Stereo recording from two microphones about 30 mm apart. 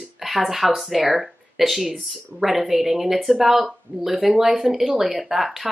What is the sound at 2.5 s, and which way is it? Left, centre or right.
Speech, right.